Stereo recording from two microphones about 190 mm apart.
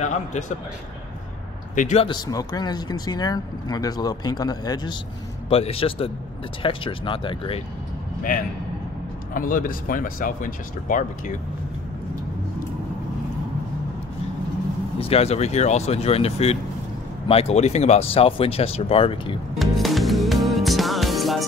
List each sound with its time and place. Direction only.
0.0 s speech: 40° left (ahead or behind)
1.8 s speech: 40° left (ahead or behind)
2.0 s speech: 20° left (ahead or behind)
5.5 s speech: 30° left (ahead or behind)
9.3 s speech: 45° left (ahead or behind)
15.0 s speech: 30° left (ahead or behind)
19.6 s music: centre (ahead or behind)